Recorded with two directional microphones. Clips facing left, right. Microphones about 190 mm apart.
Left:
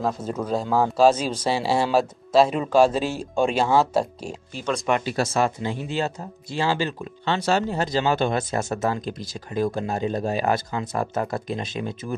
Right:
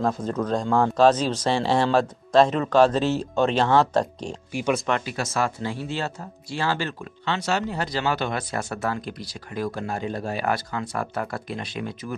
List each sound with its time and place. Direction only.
0.0 s speech: 10° left (ahead or behind)
5.0 s speech: 30° left (ahead or behind)
7.2 s speech: 30° left (ahead or behind)